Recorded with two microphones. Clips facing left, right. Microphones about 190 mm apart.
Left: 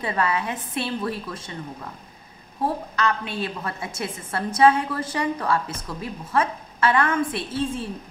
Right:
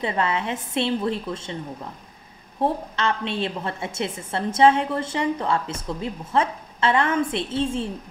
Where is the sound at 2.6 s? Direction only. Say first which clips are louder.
Right 1 dB; 25° right (ahead or behind).